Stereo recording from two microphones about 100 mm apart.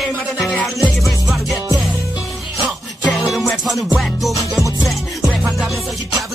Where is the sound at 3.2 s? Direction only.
Centre (ahead or behind).